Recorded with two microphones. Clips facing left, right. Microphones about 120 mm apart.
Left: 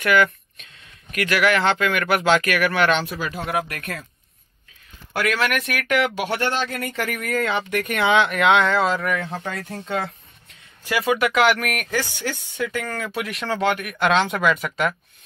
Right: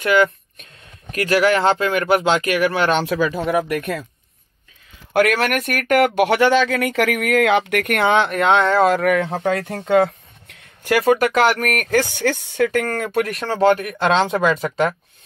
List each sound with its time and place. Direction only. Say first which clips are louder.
0.0 s speech: right 2 dB; 25° right (ahead or behind)
5.1 s speech: right 7 dB; 55° right (ahead or behind)
5.7 s speech: right 5 dB; 45° right (ahead or behind); by 8.0 s 65° right (ahead or behind)
8.3 s speech: right 2 dB; 30° right (ahead or behind)
8.8 s speech: right 7 dB; 60° right (ahead or behind)
9.8 s a sound: right 12 dB; 70° right (ahead or behind)
11.1 s speech: right 2 dB; 40° right (ahead or behind)
11.7 s speech: right 7 dB; 50° right (ahead or behind); by 15.0 s 30° right (ahead or behind)